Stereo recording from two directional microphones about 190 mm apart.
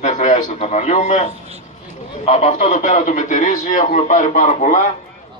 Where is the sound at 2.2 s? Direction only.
40° left (ahead or behind).